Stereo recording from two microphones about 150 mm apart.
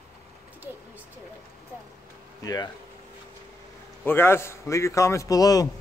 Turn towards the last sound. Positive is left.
turn(degrees=25)  # may be behind; listen again after turning